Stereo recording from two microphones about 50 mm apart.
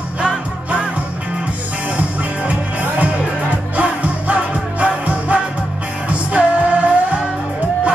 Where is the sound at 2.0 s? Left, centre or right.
Right.